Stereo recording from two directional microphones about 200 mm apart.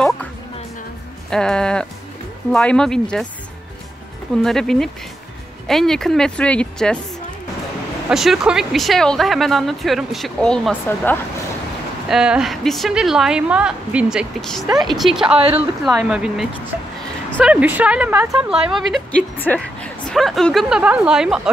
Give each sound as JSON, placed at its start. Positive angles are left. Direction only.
{"t": 1.3, "sound": "speech", "side_deg": 5}
{"t": 4.4, "sound": "speech", "side_deg": 0}
{"t": 8.1, "sound": "speech", "side_deg": 0}
{"t": 12.1, "sound": "speech", "side_deg": -5}
{"t": 15.3, "sound": "speech", "side_deg": -30}
{"t": 15.8, "sound": "a woman's voice", "side_deg": 0}